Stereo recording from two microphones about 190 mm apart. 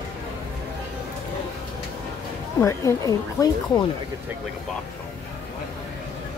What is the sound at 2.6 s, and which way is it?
Speech, 15° left (ahead or behind).